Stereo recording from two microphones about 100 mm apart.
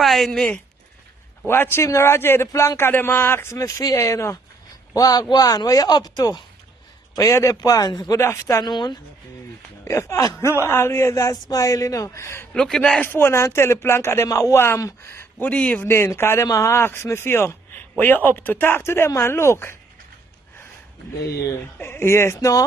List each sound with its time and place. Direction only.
0.0 s speech: centre (ahead or behind)
1.5 s a man's voice: 25° left (ahead or behind); by 8.2 s 40° left (ahead or behind)
8.2 s speech: 25° left (ahead or behind)
8.5 s a woman's voice: 45° left (ahead or behind)
9.8 s speech: 30° left (ahead or behind)
12.5 s a man's voice: 5° left (ahead or behind)
13.0 s speech: 25° left (ahead or behind)
15.9 s speech: 25° left (ahead or behind)
21.7 s speech: 25° left (ahead or behind)